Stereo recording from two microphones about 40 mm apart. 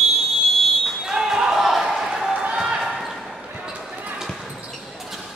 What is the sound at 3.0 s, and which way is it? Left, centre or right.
Basketball bounce, centre.